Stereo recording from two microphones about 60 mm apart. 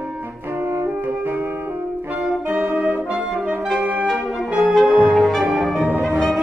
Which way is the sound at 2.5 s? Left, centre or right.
Centre.